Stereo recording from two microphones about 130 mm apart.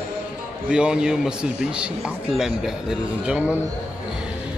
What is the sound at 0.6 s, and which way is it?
A man's voice, 5° right (ahead or behind).